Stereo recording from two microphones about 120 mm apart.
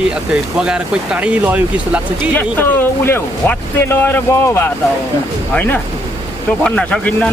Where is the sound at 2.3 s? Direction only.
20° left (ahead or behind).